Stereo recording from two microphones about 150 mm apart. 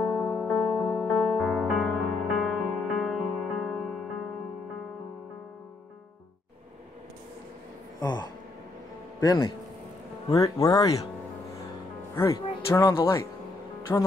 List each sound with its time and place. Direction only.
0.0 s music: centre (ahead or behind)
8.0 s speech: 30° left (ahead or behind)
12.2 s speech: 20° left (ahead or behind)